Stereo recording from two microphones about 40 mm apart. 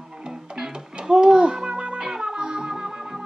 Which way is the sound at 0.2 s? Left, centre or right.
Centre.